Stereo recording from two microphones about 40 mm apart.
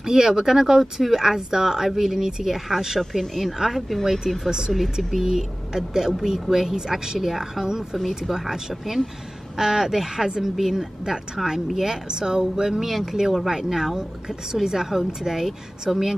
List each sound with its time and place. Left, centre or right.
0.0 s a woman's voice: centre
3.0 s speech: centre
4.5 s a woman's voice: centre